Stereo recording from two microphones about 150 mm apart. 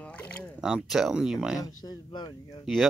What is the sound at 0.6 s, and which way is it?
Speech, 5° right (ahead or behind).